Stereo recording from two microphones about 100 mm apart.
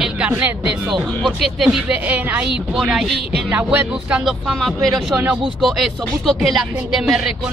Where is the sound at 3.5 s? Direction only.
15° right (ahead or behind).